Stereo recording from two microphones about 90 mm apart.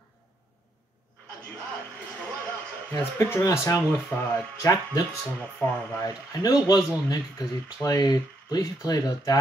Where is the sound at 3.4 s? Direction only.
35° left (ahead or behind).